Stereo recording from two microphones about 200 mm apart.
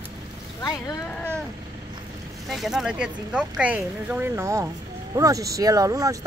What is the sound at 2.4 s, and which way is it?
Speech, centre (ahead or behind).